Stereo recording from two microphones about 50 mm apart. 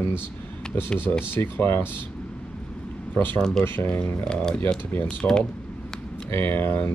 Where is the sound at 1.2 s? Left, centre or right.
Left.